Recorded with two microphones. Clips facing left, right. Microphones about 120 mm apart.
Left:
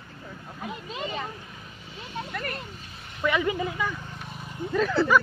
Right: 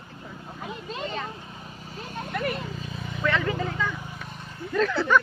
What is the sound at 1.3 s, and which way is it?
Vehicle, 25° right (ahead or behind).